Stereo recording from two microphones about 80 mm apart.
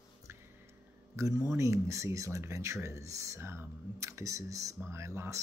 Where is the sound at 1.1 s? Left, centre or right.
Right.